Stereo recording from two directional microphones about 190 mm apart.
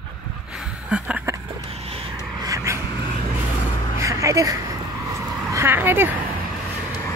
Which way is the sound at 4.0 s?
15° right (ahead or behind).